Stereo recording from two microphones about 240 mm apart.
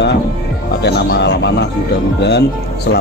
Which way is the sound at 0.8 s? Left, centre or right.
Left.